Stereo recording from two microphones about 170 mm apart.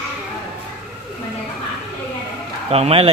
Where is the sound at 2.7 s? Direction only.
35° right (ahead or behind).